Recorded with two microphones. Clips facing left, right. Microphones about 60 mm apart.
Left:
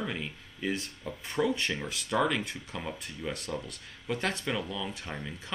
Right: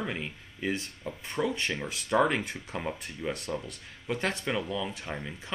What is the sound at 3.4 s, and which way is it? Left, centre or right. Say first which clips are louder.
Speech: right 2 dB; centre.